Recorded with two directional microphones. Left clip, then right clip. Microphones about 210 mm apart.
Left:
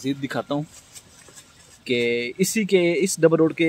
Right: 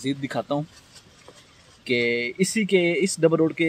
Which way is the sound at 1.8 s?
10° left (ahead or behind).